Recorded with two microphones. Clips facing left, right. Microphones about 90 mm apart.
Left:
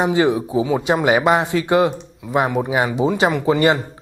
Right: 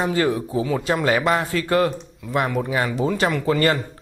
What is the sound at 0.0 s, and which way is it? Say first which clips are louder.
Speech: left 4 dB; 20° left (ahead or behind).